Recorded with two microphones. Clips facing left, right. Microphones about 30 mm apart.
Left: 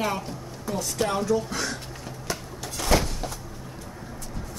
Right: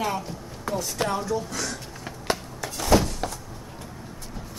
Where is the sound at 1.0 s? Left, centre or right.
Right.